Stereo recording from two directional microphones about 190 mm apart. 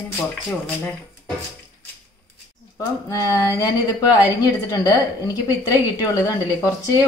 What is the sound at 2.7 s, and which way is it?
A woman's voice, 15° left (ahead or behind).